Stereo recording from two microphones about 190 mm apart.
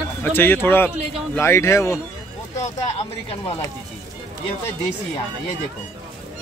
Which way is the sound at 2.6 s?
35° left (ahead or behind).